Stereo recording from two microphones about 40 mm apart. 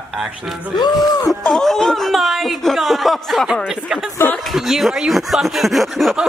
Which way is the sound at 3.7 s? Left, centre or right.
Centre.